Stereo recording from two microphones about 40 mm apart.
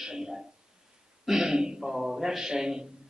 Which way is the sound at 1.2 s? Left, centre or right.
Centre.